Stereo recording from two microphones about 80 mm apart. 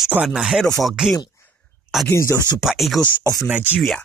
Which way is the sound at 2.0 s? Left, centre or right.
Left.